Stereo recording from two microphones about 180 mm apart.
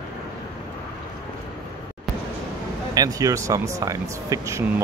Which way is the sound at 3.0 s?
20° right (ahead or behind).